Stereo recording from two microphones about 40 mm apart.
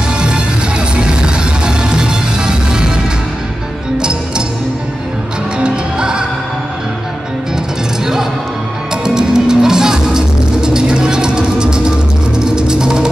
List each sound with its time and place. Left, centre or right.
0.2 s music: right
5.6 s music: right
9.0 s music: centre